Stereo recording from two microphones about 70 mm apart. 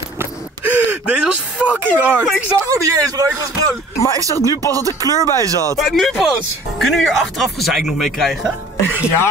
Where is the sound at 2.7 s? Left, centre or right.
Right.